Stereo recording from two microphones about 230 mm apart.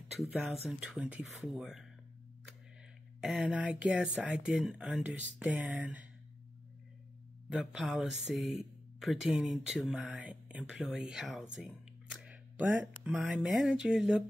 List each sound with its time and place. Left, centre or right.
0.2 s speech: centre
3.2 s speech: centre
7.5 s speech: centre